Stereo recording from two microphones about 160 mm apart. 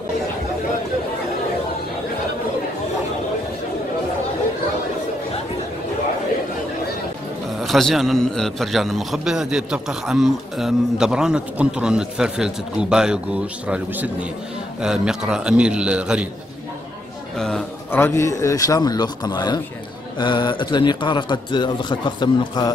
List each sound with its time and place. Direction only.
7.6 s a man's voice: centre (ahead or behind)
17.4 s a man's voice: 5° left (ahead or behind); by 22.7 s 30° left (ahead or behind)